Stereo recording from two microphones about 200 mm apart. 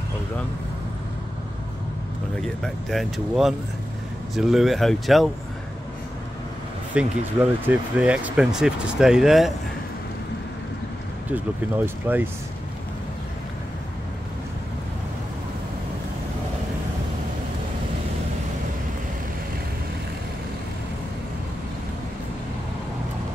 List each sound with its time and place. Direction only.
2.4 s speech: centre (ahead or behind)
6.9 s speech: 5° right (ahead or behind)
11.2 s speech: 10° right (ahead or behind)